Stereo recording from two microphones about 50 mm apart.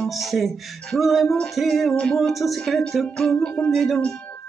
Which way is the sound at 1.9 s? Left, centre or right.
Left.